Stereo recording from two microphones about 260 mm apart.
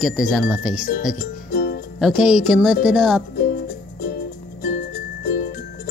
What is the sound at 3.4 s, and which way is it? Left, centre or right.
Music, left.